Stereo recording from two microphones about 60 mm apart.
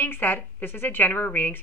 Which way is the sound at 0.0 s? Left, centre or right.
Left.